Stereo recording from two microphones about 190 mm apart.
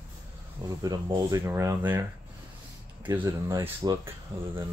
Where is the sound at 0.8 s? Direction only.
20° right (ahead or behind).